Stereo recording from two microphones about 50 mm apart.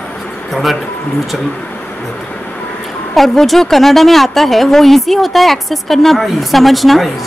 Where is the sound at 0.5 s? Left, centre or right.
Centre.